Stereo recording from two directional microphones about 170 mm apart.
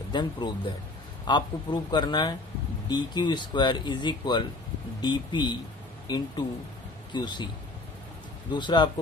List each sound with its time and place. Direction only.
0.1 s a man's voice: 25° left (ahead or behind)
8.5 s speech: 25° left (ahead or behind)